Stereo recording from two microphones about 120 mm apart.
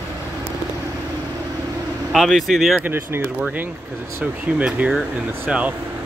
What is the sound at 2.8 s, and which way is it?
Speech, 15° right (ahead or behind).